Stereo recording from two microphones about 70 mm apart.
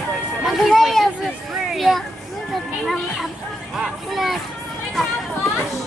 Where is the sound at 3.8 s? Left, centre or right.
Centre.